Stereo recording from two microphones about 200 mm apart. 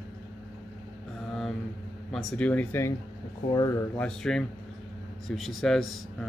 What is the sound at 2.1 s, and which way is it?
Speech, 5° left (ahead or behind).